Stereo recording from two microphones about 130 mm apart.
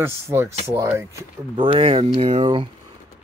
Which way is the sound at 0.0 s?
15° right (ahead or behind).